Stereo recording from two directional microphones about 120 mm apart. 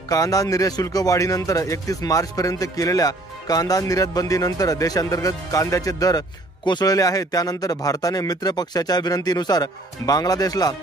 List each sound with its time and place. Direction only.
0.1 s a man's voice: 30° left (ahead or behind)